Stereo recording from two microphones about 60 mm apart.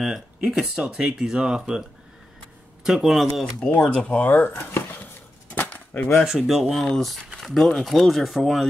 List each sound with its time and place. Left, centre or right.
0.0 s speech: centre
3.6 s speech: left
5.5 s a sound: left
6.2 s speech: centre
6.8 s speech: centre